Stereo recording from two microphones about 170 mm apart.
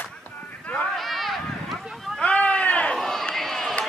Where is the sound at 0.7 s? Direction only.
Centre (ahead or behind).